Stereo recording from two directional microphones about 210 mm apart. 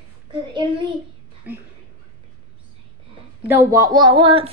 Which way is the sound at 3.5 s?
15° right (ahead or behind).